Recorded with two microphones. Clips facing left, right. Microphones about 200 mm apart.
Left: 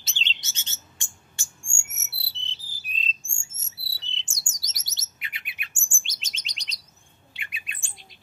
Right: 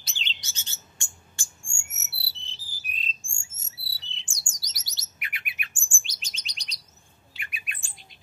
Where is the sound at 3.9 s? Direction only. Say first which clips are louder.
Left 3 dB; 20° left (ahead or behind).